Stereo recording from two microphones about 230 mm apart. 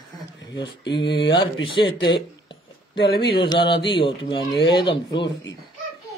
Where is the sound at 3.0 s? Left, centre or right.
Left.